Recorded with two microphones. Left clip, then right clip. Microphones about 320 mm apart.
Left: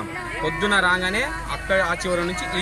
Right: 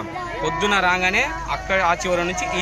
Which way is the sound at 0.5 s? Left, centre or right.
Centre.